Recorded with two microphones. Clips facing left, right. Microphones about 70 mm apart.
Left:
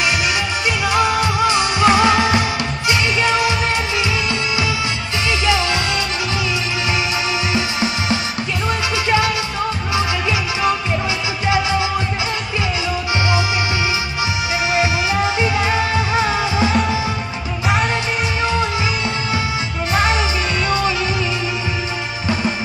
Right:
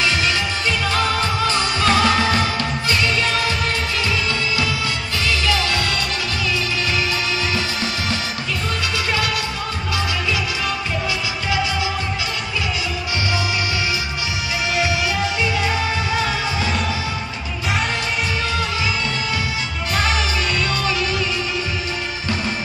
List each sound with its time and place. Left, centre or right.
0.0 s music: centre
7.5 s music: centre
14.7 s music: left
19.9 s music: left